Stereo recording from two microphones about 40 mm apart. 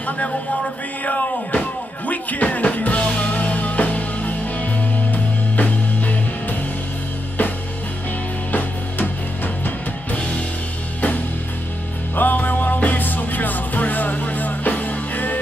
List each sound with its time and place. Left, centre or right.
0.0 s speech: left
2.0 s music: left
8.5 s music: left
12.2 s music: left